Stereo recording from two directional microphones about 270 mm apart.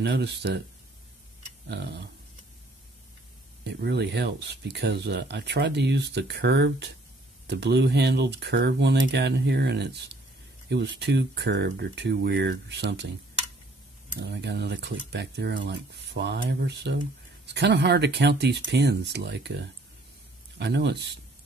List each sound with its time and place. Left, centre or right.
0.0 s speech: right
1.7 s speech: right
3.6 s speech: right
14.2 s speech: right